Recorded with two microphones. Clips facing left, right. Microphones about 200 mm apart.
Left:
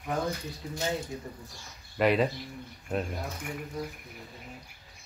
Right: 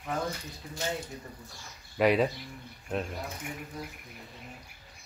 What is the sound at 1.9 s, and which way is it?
Speech, centre (ahead or behind).